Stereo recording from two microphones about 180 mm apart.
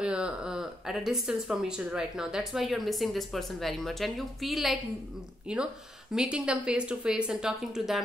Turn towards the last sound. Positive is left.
turn(degrees=0)  # may be behind; listen again after turning